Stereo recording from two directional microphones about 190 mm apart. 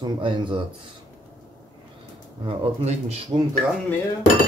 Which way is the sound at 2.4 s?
30° right (ahead or behind).